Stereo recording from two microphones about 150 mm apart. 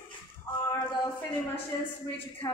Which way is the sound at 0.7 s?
15° left (ahead or behind).